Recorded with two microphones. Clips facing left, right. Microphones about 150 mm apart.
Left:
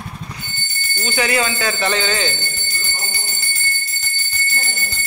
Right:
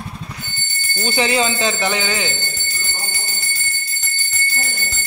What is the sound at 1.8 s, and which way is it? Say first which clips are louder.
Speech: left 1 dB; 15° right (ahead or behind).